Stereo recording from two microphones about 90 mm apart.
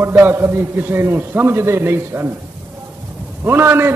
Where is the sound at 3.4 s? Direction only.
25° right (ahead or behind).